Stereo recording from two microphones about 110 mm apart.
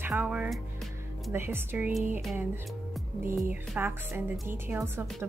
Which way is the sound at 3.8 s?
20° right (ahead or behind).